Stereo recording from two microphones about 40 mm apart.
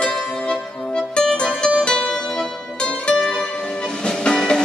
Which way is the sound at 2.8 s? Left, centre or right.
Left.